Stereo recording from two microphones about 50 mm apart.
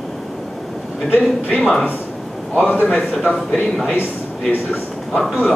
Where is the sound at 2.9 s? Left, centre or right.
Centre.